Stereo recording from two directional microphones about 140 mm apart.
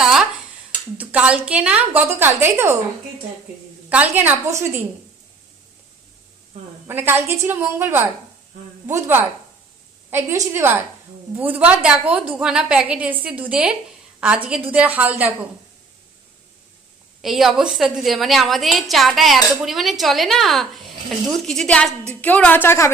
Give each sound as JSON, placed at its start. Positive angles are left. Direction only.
{"t": 0.0, "sound": "dishes", "side_deg": -5}
{"t": 0.9, "sound": "a woman's voice", "side_deg": -10}
{"t": 3.9, "sound": "a woman's voice", "side_deg": -15}
{"t": 6.9, "sound": "a woman's voice", "side_deg": -15}
{"t": 17.2, "sound": "a woman's voice", "side_deg": 0}